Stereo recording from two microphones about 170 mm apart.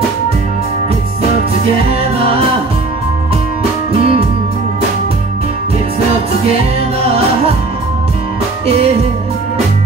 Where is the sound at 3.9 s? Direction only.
35° right (ahead or behind).